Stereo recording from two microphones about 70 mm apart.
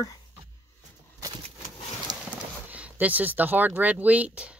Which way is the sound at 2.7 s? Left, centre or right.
Right.